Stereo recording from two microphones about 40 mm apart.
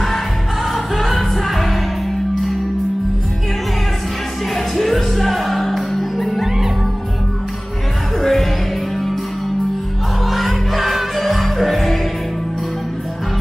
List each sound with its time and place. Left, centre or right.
1.1 s music: centre
4.6 s music: centre
8.2 s music: centre
10.2 s music: centre